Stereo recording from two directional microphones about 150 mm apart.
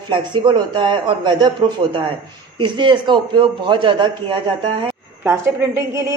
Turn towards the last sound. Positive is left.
turn(degrees=-20)  # may be behind; listen again after turning